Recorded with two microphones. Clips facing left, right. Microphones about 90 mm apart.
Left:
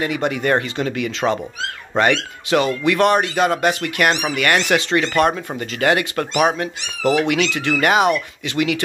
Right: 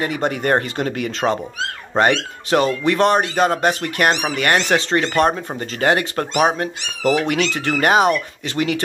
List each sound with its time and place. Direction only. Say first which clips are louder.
0.0 s speech: even; 40° right (ahead or behind)